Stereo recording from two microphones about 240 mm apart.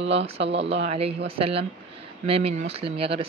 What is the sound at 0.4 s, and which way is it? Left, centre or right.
Speech, right.